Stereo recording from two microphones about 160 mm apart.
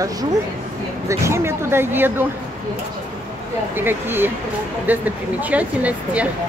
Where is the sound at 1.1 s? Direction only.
15° right (ahead or behind).